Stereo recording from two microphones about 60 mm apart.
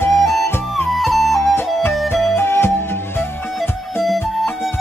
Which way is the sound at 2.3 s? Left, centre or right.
Left.